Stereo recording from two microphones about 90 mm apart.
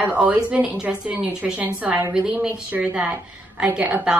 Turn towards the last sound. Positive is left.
turn(degrees=-15)  # may be behind; listen again after turning